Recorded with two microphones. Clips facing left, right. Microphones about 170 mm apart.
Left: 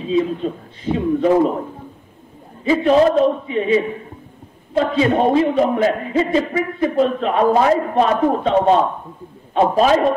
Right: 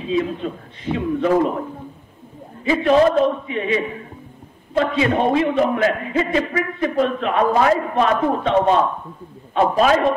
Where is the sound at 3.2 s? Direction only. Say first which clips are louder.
Left 2 dB; 35° left (ahead or behind).